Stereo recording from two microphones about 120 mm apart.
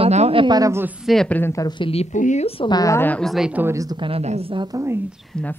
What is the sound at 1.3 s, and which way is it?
Speech, 15° left (ahead or behind).